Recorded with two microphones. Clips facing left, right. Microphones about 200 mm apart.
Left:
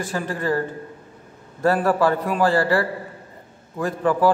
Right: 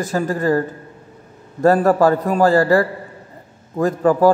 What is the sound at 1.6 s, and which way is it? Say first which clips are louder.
A man's voice: right 5 dB; 40° right (ahead or behind).